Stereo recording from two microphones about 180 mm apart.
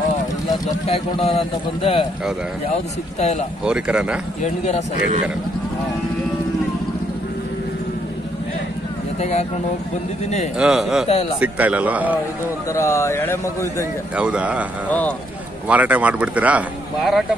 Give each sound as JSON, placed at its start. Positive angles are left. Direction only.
{"t": 0.8, "sound": "a man's voice", "side_deg": 30}
{"t": 3.6, "sound": "speech", "side_deg": -5}
{"t": 4.4, "sound": "a man's voice", "side_deg": 40}
{"t": 9.2, "sound": "a man's voice", "side_deg": 35}
{"t": 10.6, "sound": "speech", "side_deg": 0}
{"t": 11.1, "sound": "a man's voice", "side_deg": 35}
{"t": 11.3, "sound": "speech", "side_deg": -10}
{"t": 12.7, "sound": "a man's voice", "side_deg": 15}
{"t": 14.1, "sound": "speech", "side_deg": -5}
{"t": 14.9, "sound": "a man's voice", "side_deg": 10}
{"t": 15.7, "sound": "speech", "side_deg": -10}